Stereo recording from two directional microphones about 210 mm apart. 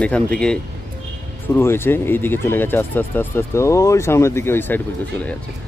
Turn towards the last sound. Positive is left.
turn(degrees=10)  # may be behind; listen again after turning